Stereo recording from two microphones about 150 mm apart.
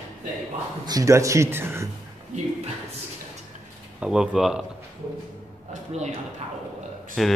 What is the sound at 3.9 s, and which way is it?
Speech, 5° right (ahead or behind).